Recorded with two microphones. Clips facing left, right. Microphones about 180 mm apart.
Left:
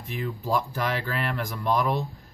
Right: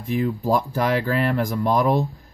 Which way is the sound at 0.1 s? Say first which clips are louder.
Right 7 dB; 45° right (ahead or behind).